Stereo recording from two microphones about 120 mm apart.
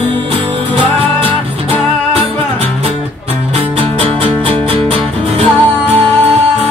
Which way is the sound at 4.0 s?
50° right (ahead or behind).